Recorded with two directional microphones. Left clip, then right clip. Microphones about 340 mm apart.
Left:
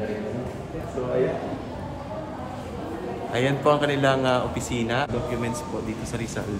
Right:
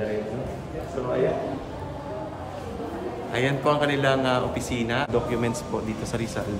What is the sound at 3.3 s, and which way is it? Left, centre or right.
A man's voice, centre.